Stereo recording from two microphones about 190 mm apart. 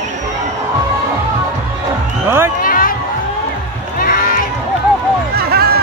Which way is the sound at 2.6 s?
50° left (ahead or behind).